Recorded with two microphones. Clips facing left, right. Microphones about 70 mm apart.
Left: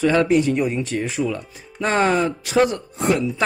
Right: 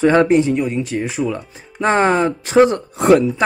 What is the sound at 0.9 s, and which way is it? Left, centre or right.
Speech, centre.